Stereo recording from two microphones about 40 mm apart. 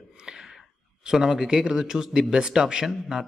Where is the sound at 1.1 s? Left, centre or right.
Centre.